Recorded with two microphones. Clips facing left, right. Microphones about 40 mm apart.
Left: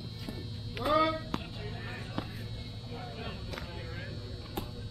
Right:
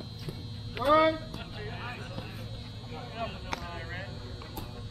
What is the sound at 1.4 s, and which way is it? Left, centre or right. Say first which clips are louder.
Music: right 2 dB; right.